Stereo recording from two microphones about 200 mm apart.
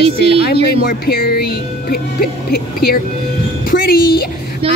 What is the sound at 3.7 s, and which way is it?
Music, 50° left (ahead or behind).